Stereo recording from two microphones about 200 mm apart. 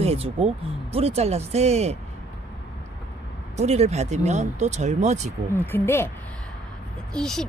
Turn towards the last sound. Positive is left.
turn(degrees=5)  # may be behind; listen again after turning